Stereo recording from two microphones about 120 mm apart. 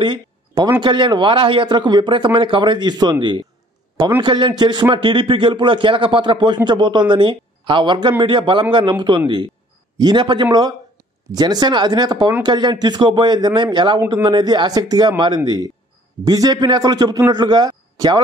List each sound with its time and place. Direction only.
0.0 s a man's voice: 40° right (ahead or behind)
9.9 s a man's voice: 40° right (ahead or behind)